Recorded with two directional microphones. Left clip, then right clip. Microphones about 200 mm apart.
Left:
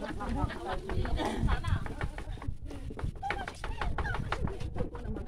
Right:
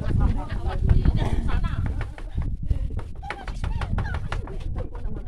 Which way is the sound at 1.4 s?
60° right (ahead or behind).